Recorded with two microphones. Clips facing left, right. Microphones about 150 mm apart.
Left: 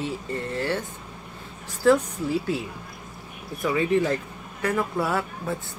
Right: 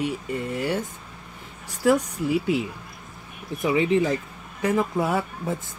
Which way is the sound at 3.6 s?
20° right (ahead or behind).